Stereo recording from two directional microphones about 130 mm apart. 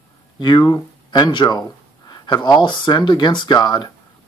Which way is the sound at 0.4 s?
35° left (ahead or behind).